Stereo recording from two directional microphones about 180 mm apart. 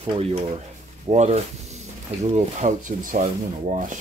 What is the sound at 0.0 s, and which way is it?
Speech, 30° right (ahead or behind).